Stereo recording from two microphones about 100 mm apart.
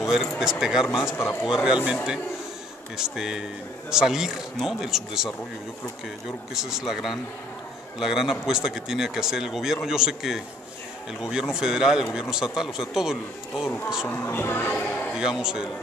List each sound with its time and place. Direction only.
0.0 s a man's voice: 5° right (ahead or behind)
1.0 s a man's voice: 30° left (ahead or behind)
1.4 s a man's voice: 5° right (ahead or behind)
3.0 s a man's voice: 5° right (ahead or behind)
6.5 s a man's voice: 5° right (ahead or behind)
14.0 s speech: 20° left (ahead or behind)
15.1 s a man's voice: 5° right (ahead or behind)